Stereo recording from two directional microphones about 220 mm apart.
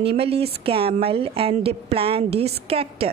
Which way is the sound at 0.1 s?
25° right (ahead or behind).